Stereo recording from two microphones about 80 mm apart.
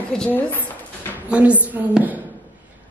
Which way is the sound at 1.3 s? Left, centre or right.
Centre.